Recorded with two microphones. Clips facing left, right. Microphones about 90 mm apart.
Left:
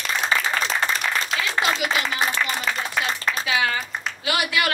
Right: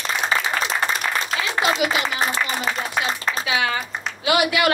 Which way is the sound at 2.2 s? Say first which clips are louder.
Right 1 dB; 35° right (ahead or behind).